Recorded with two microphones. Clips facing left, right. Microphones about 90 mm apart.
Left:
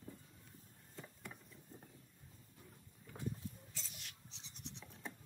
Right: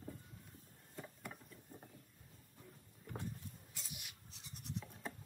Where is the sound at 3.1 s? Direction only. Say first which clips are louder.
Right 6 dB; 50° right (ahead or behind).